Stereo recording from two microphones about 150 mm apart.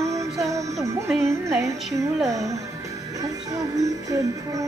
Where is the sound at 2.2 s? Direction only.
20° right (ahead or behind).